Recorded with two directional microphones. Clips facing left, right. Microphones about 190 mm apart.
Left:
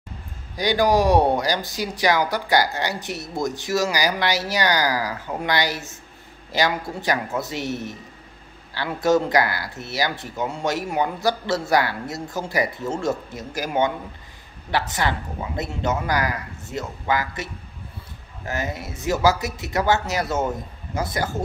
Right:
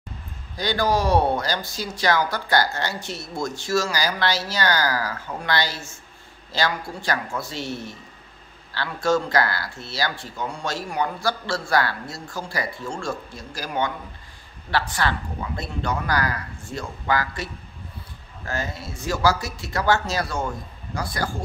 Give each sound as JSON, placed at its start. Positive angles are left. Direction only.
{"t": 0.6, "sound": "speech", "side_deg": 15}